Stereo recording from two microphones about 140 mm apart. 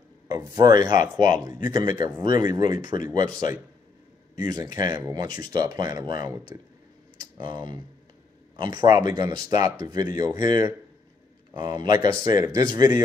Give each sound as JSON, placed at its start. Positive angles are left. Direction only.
{"t": 0.3, "sound": "speech", "side_deg": -30}